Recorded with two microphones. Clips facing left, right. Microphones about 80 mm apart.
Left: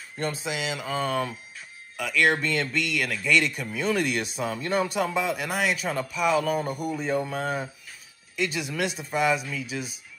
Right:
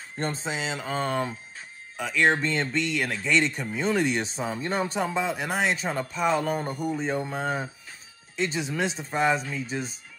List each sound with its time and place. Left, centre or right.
0.2 s speech: right